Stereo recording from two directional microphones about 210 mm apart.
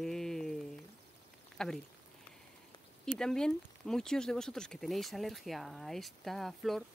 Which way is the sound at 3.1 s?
Centre (ahead or behind).